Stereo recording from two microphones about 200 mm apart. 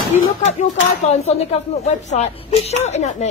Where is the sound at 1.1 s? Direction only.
30° left (ahead or behind).